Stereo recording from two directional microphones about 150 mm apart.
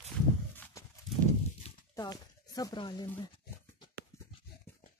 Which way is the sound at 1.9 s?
25° left (ahead or behind).